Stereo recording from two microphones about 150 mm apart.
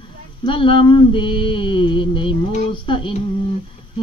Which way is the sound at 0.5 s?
35° left (ahead or behind).